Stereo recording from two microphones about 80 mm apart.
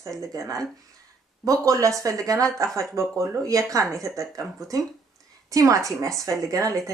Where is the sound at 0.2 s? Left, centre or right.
Right.